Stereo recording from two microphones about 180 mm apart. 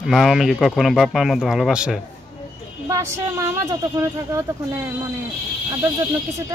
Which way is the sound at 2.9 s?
15° right (ahead or behind).